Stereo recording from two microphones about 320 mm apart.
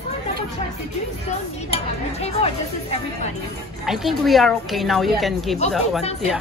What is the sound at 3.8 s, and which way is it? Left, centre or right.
A woman's voice, centre.